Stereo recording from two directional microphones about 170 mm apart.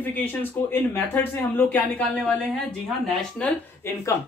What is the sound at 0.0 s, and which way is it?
A woman's voice, 10° left (ahead or behind).